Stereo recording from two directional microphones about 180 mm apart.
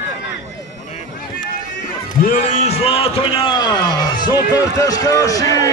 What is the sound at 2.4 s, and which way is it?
A man's voice, 35° left (ahead or behind).